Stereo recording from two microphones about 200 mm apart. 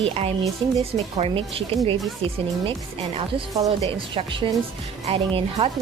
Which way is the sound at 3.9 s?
25° right (ahead or behind).